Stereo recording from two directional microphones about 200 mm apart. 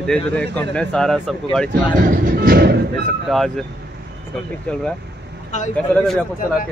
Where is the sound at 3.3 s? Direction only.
Centre (ahead or behind).